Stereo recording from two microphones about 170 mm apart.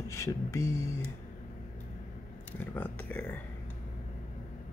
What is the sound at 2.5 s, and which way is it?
Speech, 10° left (ahead or behind).